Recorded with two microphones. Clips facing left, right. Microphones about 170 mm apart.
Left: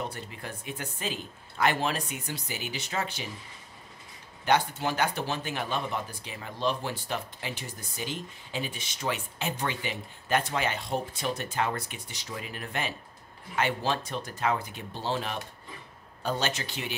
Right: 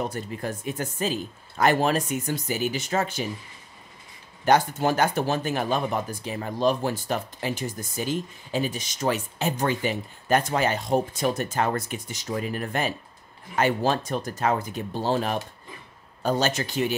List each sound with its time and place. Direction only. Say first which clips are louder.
0.0 s speech: right 7 dB; 45° right (ahead or behind)
4.5 s speech: right 5 dB; 45° right (ahead or behind)